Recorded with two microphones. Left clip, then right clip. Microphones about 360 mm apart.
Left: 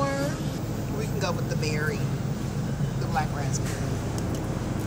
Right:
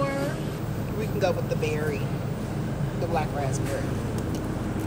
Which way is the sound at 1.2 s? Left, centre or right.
Centre.